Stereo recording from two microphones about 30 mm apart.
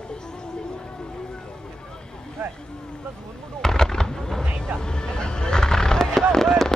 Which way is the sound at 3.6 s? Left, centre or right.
Centre.